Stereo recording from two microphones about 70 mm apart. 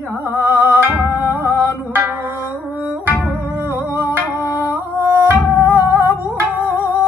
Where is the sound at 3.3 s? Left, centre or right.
Right.